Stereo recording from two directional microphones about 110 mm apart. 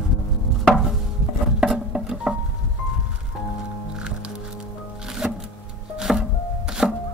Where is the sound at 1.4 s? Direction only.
5° right (ahead or behind).